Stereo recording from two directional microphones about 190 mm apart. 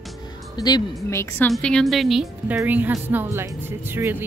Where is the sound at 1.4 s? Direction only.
5° left (ahead or behind); by 4.2 s 10° right (ahead or behind).